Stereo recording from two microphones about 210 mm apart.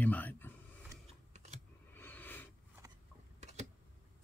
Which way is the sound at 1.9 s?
10° left (ahead or behind).